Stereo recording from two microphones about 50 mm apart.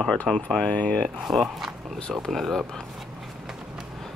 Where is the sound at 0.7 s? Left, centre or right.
Left.